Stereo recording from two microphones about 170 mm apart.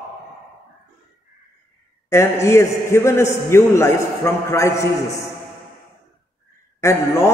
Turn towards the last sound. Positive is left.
turn(degrees=15)  # may be behind; listen again after turning